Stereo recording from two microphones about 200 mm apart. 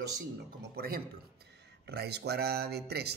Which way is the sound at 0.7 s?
45° right (ahead or behind).